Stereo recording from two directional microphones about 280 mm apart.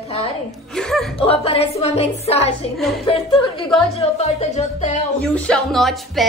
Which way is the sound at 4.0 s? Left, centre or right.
Left.